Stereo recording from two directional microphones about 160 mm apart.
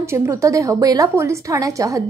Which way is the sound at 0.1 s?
15° right (ahead or behind).